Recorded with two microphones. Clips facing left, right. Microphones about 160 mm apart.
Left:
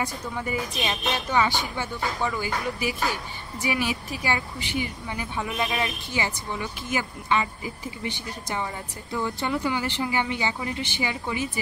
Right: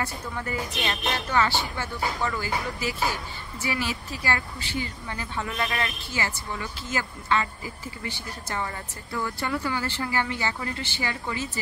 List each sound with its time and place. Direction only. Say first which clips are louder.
0.0 s speech: left 2 dB; 15° left (ahead or behind)